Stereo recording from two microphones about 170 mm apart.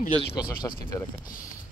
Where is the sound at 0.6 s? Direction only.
20° left (ahead or behind).